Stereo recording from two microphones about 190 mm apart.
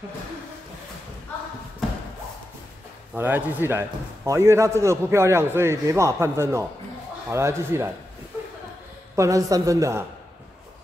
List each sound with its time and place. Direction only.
3.2 s a man's voice: 10° right (ahead or behind)
9.1 s a man's voice: 15° right (ahead or behind)